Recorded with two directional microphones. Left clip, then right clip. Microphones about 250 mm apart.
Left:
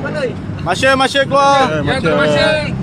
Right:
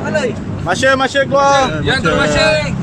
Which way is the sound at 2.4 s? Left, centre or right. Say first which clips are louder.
Right 1 dB; right.